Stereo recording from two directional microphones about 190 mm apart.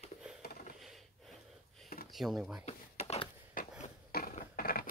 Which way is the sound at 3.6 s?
45° left (ahead or behind).